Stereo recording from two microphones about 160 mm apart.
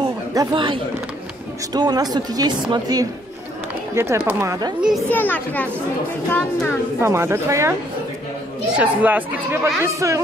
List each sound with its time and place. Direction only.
0.0 s chatter: 25° right (ahead or behind)
1.7 s speech: 25° right (ahead or behind)
5.1 s speech: 10° left (ahead or behind)
7.0 s speech: 15° right (ahead or behind)
8.7 s speech: 10° right (ahead or behind)